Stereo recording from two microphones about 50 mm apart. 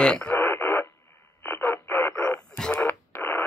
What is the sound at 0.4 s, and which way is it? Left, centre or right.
Radio, left.